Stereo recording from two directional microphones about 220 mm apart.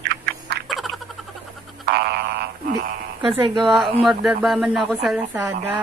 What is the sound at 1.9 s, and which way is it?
Frog, 45° right (ahead or behind).